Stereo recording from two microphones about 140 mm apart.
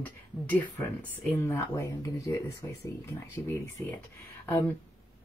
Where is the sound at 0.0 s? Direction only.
10° left (ahead or behind).